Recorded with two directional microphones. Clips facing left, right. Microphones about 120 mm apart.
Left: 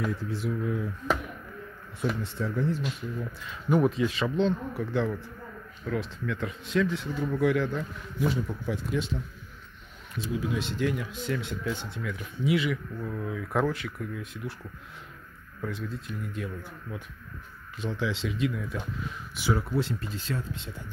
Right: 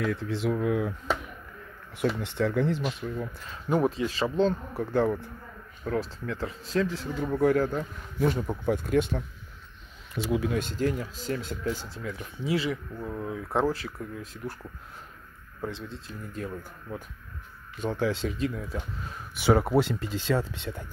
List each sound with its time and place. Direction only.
0.0 s speech: 75° right (ahead or behind)
2.2 s speech: 75° right (ahead or behind)
3.2 s speech: 35° right (ahead or behind); by 9.2 s 55° right (ahead or behind)
10.1 s speech: 70° right (ahead or behind)
10.6 s speech: 40° right (ahead or behind)
15.6 s speech: 25° right (ahead or behind)
16.3 s speech: 40° right (ahead or behind)
19.3 s speech: 65° right (ahead or behind)